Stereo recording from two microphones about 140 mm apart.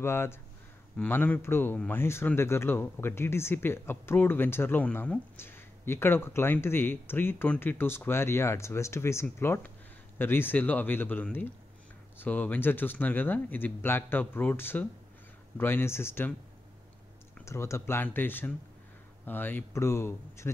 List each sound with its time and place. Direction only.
0.0 s speech: 20° left (ahead or behind)
17.5 s speech: 20° left (ahead or behind)